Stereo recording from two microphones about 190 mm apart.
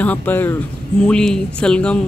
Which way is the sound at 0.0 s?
10° left (ahead or behind).